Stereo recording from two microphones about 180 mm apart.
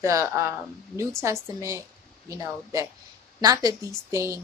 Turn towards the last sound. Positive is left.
turn(degrees=-15)  # may be behind; listen again after turning